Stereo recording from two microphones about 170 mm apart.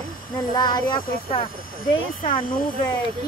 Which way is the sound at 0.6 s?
25° left (ahead or behind).